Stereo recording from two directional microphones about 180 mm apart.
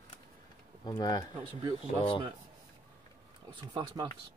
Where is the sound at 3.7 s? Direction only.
25° right (ahead or behind).